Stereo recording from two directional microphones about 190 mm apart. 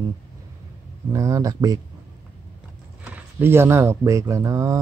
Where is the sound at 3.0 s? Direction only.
10° right (ahead or behind).